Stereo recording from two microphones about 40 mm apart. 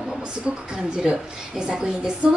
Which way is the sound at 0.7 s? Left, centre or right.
Centre.